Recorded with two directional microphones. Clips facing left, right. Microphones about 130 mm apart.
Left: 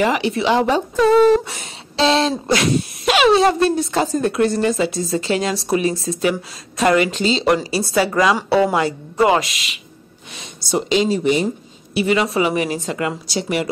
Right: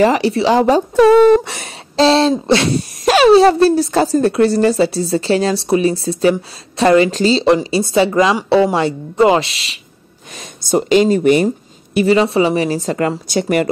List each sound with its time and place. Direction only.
0.0 s speech: 35° right (ahead or behind)
0.9 s speech: 65° right (ahead or behind)
2.0 s speech: 35° right (ahead or behind)
7.5 s a woman's voice: 25° right (ahead or behind)
10.3 s speech: 45° right (ahead or behind)
11.9 s a woman's voice: 45° right (ahead or behind)
12.2 s speech: 30° right (ahead or behind); by 13.7 s 50° right (ahead or behind)